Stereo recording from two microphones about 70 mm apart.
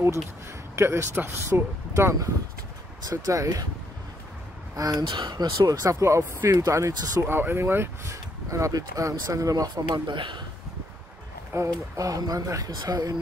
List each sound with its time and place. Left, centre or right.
0.7 s speech: right
3.1 s speech: right
4.7 s speech: right
7.2 s speech: right
8.5 s speech: right
11.5 s speech: right
11.9 s speech: right